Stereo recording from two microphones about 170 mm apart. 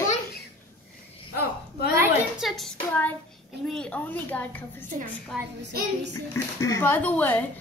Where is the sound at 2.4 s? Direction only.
Centre (ahead or behind).